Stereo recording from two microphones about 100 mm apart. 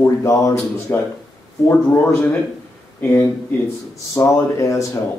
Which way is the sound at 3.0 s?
25° left (ahead or behind).